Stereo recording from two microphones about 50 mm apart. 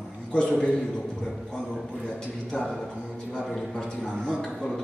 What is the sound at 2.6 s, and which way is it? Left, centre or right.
Speech, centre.